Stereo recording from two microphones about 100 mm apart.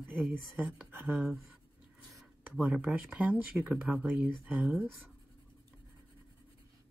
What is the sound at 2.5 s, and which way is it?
Speech, 10° right (ahead or behind).